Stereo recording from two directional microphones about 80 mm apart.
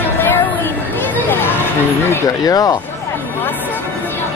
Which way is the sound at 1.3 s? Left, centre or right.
Left.